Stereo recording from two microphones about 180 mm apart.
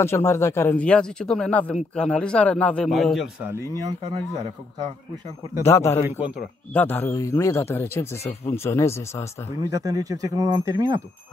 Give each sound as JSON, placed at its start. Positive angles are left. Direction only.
{"t": 0.0, "sound": "a man's voice", "side_deg": 15}
{"t": 3.4, "sound": "speech", "side_deg": -20}
{"t": 5.6, "sound": "speech", "side_deg": 15}
{"t": 6.0, "sound": "speech", "side_deg": -10}
{"t": 6.7, "sound": "speech", "side_deg": 10}
{"t": 9.6, "sound": "speech", "side_deg": -20}